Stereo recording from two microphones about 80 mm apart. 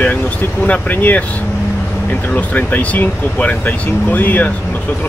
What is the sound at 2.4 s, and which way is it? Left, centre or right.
Speech, left.